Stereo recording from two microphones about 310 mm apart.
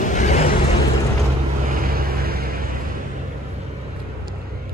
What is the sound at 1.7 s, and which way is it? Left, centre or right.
Vehicle, right.